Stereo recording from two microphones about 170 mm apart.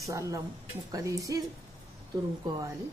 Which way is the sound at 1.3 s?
20° right (ahead or behind).